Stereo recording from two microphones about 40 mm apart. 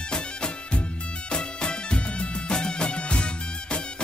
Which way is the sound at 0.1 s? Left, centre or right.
Left.